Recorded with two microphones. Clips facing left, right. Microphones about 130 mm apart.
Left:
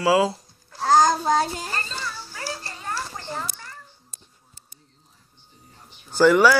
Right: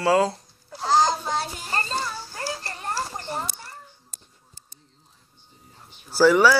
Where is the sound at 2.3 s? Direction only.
40° right (ahead or behind).